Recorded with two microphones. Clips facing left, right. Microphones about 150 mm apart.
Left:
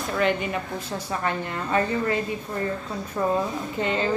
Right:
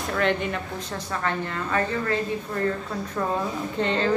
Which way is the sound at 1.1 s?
20° left (ahead or behind).